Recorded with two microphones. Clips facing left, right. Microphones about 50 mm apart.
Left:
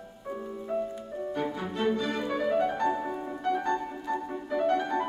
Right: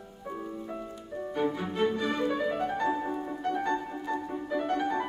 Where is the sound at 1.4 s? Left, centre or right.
Centre.